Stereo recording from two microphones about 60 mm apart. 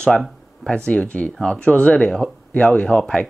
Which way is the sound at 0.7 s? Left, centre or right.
Centre.